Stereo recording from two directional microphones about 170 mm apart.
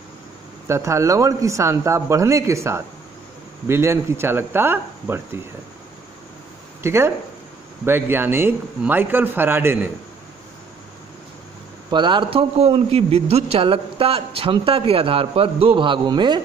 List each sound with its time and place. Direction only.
0.7 s speech: 15° right (ahead or behind)
6.8 s speech: 15° right (ahead or behind)
11.9 s a man's voice: 25° right (ahead or behind)